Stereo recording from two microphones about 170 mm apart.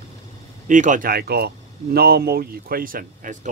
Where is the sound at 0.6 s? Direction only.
50° right (ahead or behind).